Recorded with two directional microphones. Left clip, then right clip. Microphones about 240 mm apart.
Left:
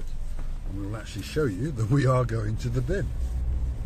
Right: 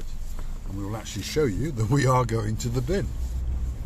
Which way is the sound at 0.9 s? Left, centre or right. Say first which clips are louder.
Right 4 dB; right.